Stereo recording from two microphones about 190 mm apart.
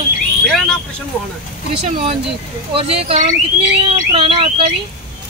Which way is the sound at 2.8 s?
30° right (ahead or behind).